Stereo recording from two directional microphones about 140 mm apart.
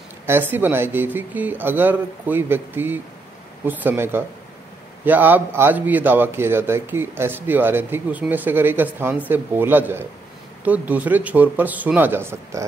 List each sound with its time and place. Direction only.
0.3 s a man's voice: 15° right (ahead or behind)